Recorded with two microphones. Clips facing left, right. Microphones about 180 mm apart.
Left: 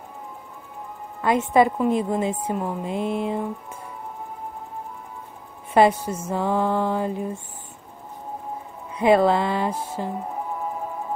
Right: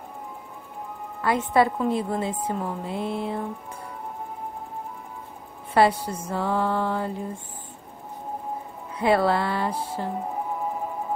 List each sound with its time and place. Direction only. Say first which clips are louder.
1.2 s a woman's voice: left 3 dB; 15° left (ahead or behind)
5.8 s a woman's voice: left 3 dB; 15° left (ahead or behind)
8.9 s a woman's voice: left 4 dB; 15° left (ahead or behind)